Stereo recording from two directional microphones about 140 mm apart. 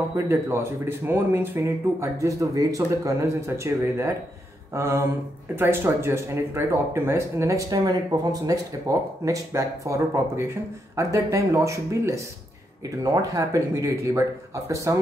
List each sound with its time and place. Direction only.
0.1 s speech: 20° right (ahead or behind)